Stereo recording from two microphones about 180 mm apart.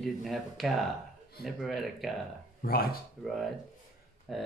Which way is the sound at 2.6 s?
55° left (ahead or behind).